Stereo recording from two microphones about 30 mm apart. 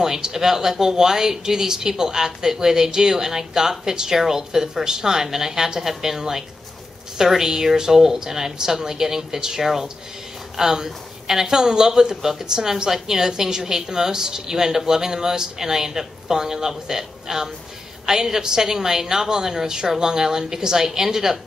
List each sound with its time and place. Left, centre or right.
0.0 s speech: centre